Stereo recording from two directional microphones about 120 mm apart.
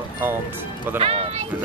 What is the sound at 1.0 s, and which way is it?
Speech, 55° right (ahead or behind).